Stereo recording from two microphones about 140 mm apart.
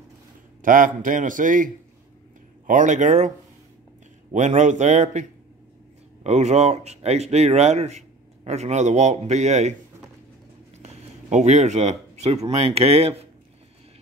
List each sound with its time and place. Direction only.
0.6 s a man's voice: 75° right (ahead or behind)
6.2 s a man's voice: 50° right (ahead or behind)
10.8 s speech: 55° right (ahead or behind)